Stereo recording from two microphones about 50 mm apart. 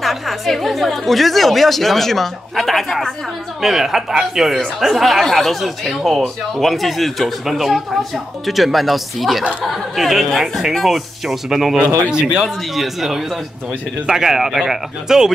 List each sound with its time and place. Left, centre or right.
0.0 s speech: centre
3.6 s speech: centre
11.8 s speech: left
12.1 s speech: centre
12.7 s speech: centre